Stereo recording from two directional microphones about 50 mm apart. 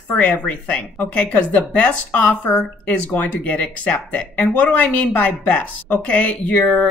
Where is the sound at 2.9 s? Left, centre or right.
Left.